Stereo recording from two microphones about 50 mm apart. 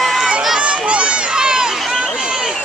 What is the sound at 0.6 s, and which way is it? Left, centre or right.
Run, right.